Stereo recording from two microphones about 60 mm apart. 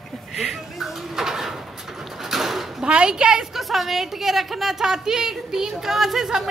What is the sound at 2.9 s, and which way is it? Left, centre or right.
A woman's voice, centre.